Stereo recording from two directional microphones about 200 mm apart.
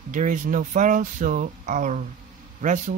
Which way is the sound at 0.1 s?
40° right (ahead or behind).